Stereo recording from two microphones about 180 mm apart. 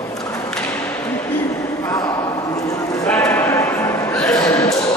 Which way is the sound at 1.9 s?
15° left (ahead or behind).